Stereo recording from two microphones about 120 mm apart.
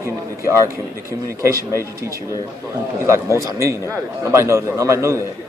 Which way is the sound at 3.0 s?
25° right (ahead or behind).